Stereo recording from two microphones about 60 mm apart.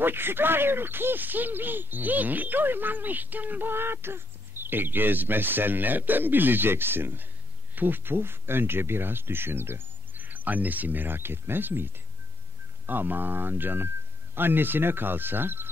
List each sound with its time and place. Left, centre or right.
0.0 s speech: right